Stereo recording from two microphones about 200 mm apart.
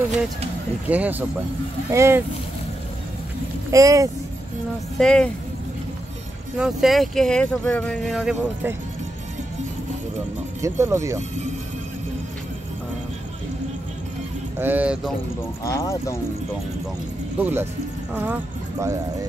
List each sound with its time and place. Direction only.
0.8 s speech: 10° right (ahead or behind)
3.7 s speech: 15° right (ahead or behind)
4.9 s speech: 5° left (ahead or behind)
6.5 s speech: centre (ahead or behind)
10.6 s speech: 15° right (ahead or behind)
14.6 s speech: 10° right (ahead or behind)
15.6 s speech: 15° left (ahead or behind)
17.4 s speech: 10° right (ahead or behind)